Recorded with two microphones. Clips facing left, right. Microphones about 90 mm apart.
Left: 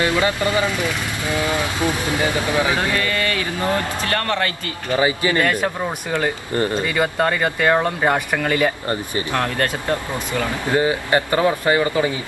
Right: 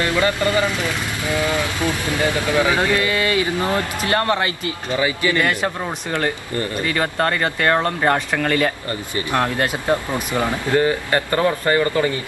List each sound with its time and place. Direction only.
0.0 s speech: 20° left (ahead or behind)
2.7 s a man's voice: 20° right (ahead or behind)
4.9 s speech: 25° left (ahead or behind)
6.9 s speech: 5° left (ahead or behind)
9.3 s speech: 15° right (ahead or behind)
10.7 s speech: 15° left (ahead or behind)